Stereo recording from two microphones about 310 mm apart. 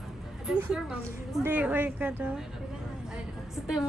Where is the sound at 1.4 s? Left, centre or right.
Centre.